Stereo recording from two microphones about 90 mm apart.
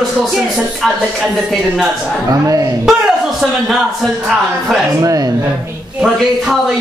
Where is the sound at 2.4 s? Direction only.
35° right (ahead or behind).